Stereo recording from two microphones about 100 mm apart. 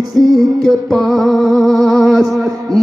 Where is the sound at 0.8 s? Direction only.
Centre (ahead or behind).